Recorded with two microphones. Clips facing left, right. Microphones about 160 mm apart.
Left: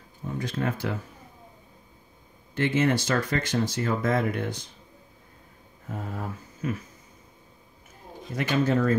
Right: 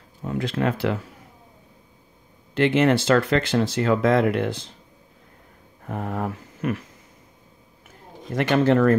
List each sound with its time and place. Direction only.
0.2 s speech: 80° right
2.5 s speech: 70° right (ahead or behind)
5.9 s speech: 65° right (ahead or behind)
8.3 s speech: 60° right (ahead or behind)